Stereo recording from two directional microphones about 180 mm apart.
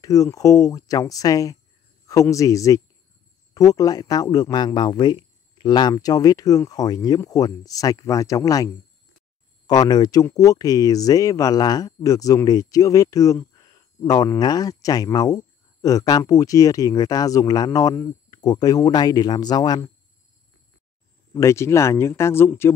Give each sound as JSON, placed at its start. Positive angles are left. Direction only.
{"t": 0.0, "sound": "speech", "side_deg": 20}
{"t": 9.7, "sound": "speech", "side_deg": 20}
{"t": 21.3, "sound": "speech", "side_deg": 15}